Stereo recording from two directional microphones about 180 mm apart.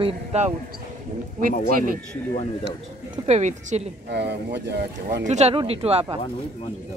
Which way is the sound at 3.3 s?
40° right (ahead or behind).